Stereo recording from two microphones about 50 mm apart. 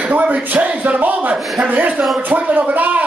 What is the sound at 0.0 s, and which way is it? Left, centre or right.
Speech, right.